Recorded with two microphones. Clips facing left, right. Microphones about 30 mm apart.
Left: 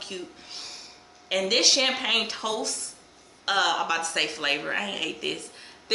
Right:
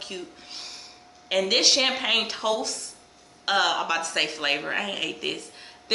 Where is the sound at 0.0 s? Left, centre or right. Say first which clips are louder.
Even; centre.